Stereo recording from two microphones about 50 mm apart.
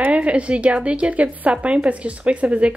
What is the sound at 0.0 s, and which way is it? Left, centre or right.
A woman's voice, right.